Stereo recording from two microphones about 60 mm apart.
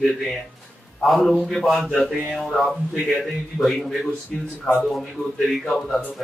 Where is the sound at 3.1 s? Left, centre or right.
Centre.